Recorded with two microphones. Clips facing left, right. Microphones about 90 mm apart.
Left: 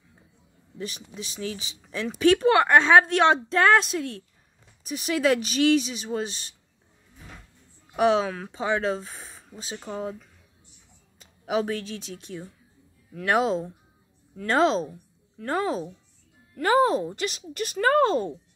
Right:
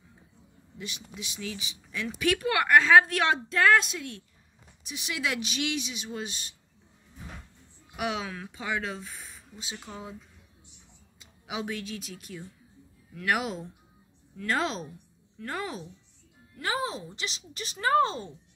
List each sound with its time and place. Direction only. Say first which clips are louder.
0.7 s speech: left 5 dB; 40° left (ahead or behind)
7.9 s speech: left 11 dB; 35° left (ahead or behind)
9.8 s speech: left 11 dB; 50° left (ahead or behind)
11.1 s speech: left 10 dB; 45° left (ahead or behind)
16.5 s speech: left 11 dB; 50° left (ahead or behind)